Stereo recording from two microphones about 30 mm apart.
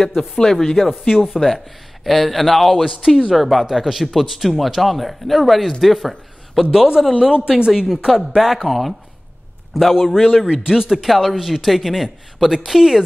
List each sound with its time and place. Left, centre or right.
0.0 s speech: centre
0.7 s speech: centre
1.1 s speech: centre
2.0 s speech: centre
2.7 s speech: centre
7.3 s speech: right
7.7 s speech: centre
9.9 s speech: centre
10.4 s speech: right
11.1 s speech: centre